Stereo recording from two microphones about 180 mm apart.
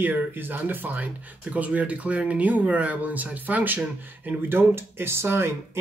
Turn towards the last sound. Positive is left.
turn(degrees=-15)  # may be behind; listen again after turning